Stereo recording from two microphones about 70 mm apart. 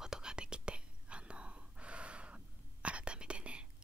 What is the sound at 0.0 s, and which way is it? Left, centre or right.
Whispering, centre.